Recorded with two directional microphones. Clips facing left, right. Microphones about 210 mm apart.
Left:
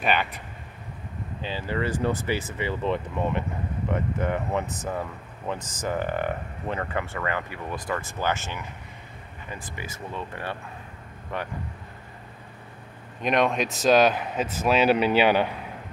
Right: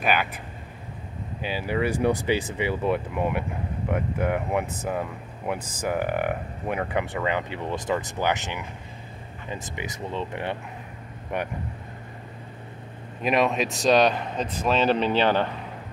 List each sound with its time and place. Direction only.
0.0 s speech: centre (ahead or behind)
1.4 s speech: 10° right (ahead or behind)
5.8 s speech: 10° right (ahead or behind)
13.2 s speech: 5° right (ahead or behind)